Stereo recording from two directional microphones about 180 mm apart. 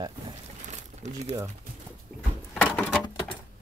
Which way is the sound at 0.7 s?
40° right (ahead or behind).